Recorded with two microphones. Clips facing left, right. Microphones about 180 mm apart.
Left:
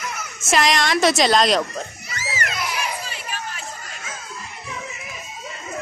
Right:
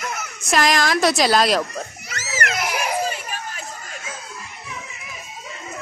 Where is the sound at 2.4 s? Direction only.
85° right.